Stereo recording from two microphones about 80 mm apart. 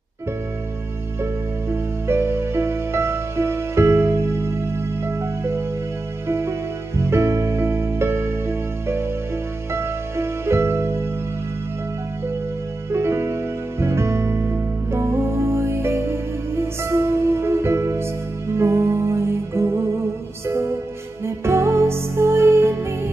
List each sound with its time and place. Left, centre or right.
1.2 s music: right
12.9 s music: right